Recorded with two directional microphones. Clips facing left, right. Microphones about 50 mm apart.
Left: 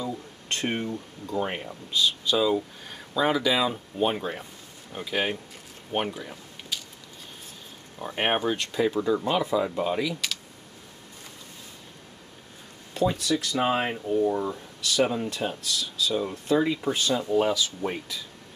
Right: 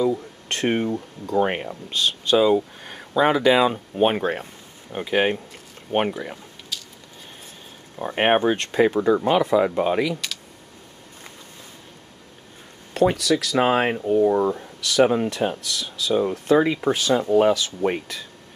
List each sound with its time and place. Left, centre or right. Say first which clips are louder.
0.5 s speech: right 6 dB; right
6.7 s a sound: even; centre
8.0 s speech: right 7 dB; right
12.9 s speech: right 6 dB; right
13.2 s speech: right 6 dB; right
17.3 s speech: right 7 dB; right